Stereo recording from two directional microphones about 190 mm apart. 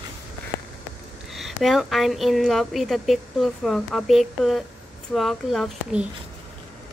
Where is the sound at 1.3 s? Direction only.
Centre (ahead or behind).